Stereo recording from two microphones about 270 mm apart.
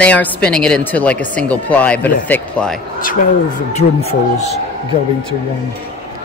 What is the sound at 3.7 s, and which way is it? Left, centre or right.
Speech, left.